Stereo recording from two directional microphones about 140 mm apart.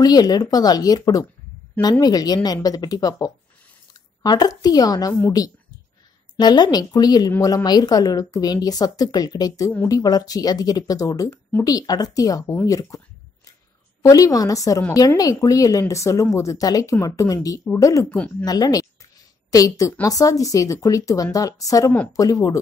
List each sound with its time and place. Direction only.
0.0 s a woman's voice: 25° left (ahead or behind)
6.3 s a woman's voice: 30° left (ahead or behind)
14.0 s a woman's voice: 25° left (ahead or behind)